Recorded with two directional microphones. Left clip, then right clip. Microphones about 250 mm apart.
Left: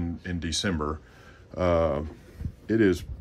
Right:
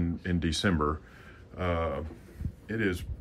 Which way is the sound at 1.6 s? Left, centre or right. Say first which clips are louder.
Left 7 dB; left.